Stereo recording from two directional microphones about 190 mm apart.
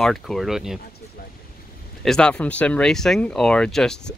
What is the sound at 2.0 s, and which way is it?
Speech, 5° left (ahead or behind).